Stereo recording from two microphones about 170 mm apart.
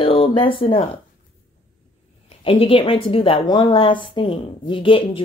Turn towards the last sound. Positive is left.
turn(degrees=30)  # may be behind; listen again after turning